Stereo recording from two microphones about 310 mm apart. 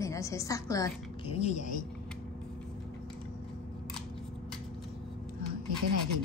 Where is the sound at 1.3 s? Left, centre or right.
Left.